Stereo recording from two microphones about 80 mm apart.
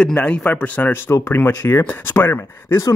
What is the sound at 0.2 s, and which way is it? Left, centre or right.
Speech, centre.